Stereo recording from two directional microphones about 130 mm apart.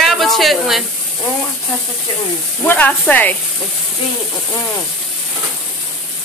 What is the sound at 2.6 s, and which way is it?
Speech, 15° left (ahead or behind).